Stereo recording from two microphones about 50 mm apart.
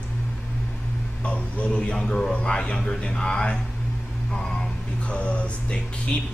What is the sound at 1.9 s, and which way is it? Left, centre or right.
Speech, centre.